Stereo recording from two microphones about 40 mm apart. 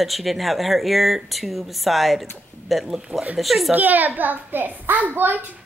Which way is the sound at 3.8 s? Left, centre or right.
Right.